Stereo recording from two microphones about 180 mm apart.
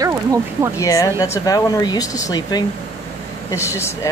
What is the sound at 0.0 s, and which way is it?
Speech, 20° right (ahead or behind).